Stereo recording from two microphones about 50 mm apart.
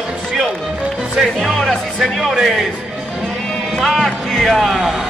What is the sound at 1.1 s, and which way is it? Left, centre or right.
Speech, centre.